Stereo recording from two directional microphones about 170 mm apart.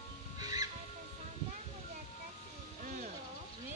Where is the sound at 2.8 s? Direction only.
45° right (ahead or behind).